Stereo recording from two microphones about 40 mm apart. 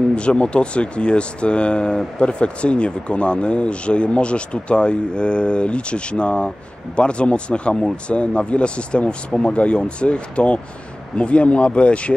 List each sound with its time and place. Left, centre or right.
0.1 s speech: left